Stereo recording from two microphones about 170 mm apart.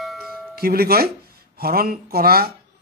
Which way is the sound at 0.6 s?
65° right (ahead or behind).